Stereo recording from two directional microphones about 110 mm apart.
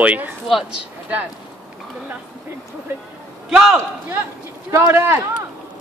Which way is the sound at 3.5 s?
5° right (ahead or behind).